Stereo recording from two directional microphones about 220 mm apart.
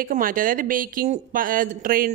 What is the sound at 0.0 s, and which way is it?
Speech, 40° right (ahead or behind).